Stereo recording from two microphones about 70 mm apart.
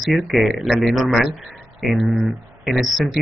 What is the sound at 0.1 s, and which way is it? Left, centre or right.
Speech, centre.